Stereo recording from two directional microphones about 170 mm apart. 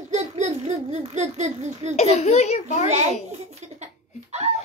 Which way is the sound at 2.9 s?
40° right (ahead or behind).